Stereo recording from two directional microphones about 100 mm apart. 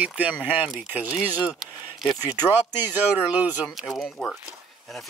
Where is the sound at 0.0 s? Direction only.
15° right (ahead or behind).